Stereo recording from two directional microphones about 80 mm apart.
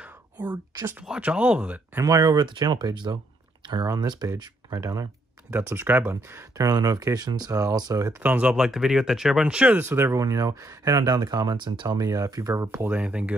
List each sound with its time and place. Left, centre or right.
0.0 s whispering: centre
1.0 s speech: centre
2.0 s speech: right
2.3 s speech: right
3.8 s speech: right
4.7 s speech: right
5.9 s speech: right
6.6 s speech: right
8.2 s speech: centre
8.5 s speech: centre
9.8 s speech: right
10.2 s speech: right
12.0 s speech: right
12.8 s speech: centre